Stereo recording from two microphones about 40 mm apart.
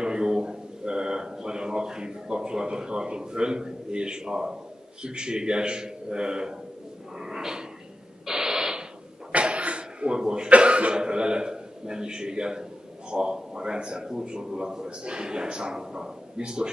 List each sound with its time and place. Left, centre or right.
0.0 s a sound: centre
5.0 s a man's voice: right
7.2 s a sound: centre
8.3 s radio: centre
9.3 s cough: right
10.5 s a man's voice: right